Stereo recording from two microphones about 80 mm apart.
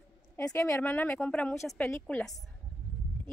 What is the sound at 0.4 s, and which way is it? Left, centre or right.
A woman's voice, left.